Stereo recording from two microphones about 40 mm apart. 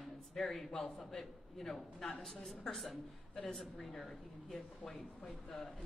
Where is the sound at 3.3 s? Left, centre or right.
Centre.